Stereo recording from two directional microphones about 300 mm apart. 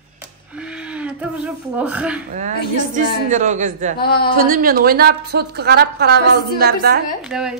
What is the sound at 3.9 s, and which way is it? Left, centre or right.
Speech, left.